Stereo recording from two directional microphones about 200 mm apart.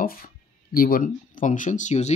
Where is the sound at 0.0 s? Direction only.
45° left (ahead or behind).